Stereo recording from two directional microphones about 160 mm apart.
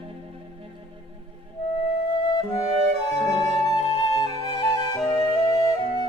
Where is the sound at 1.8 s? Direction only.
30° left (ahead or behind).